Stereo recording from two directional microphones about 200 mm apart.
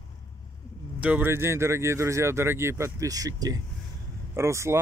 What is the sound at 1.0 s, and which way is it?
Speech, 10° right (ahead or behind).